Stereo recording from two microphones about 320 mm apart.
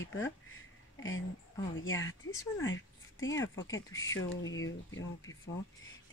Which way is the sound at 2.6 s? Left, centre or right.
Left.